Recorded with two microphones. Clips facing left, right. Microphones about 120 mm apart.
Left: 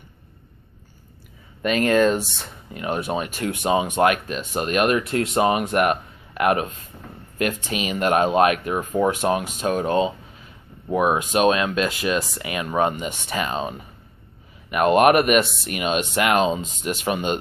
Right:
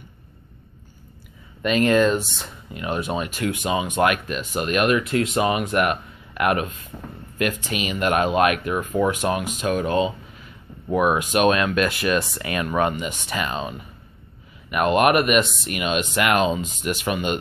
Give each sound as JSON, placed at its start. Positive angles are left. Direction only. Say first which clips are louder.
{"t": 1.6, "sound": "speech", "louder": "even", "side_deg": 40}